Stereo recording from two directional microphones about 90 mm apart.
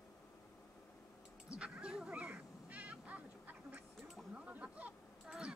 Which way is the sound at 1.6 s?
10° right (ahead or behind).